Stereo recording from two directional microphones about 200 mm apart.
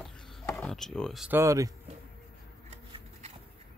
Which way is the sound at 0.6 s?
Centre (ahead or behind).